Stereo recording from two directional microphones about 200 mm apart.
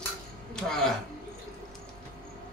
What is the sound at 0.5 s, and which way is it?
Music, 5° left (ahead or behind).